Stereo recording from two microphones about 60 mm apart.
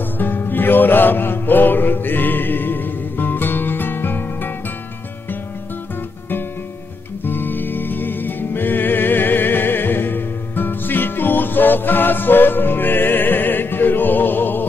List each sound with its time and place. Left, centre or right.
0.2 s music: left
7.2 s music: left